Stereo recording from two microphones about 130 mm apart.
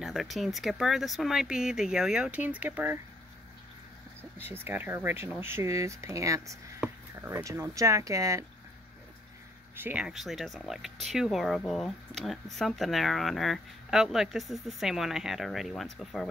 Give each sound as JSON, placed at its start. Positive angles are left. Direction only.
{"t": 0.0, "sound": "speech", "side_deg": 0}
{"t": 4.6, "sound": "speech", "side_deg": -15}
{"t": 9.8, "sound": "speech", "side_deg": -15}
{"t": 10.0, "sound": "speech", "side_deg": 0}